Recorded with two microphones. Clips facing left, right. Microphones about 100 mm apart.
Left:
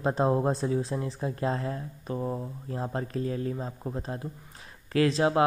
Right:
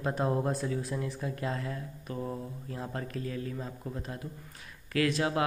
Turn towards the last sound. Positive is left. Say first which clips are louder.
# left 5 dB
turn(degrees=30)  # may be behind; listen again after turning